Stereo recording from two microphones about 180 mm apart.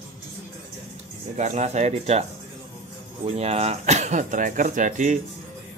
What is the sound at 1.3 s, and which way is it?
Speech, 40° right (ahead or behind).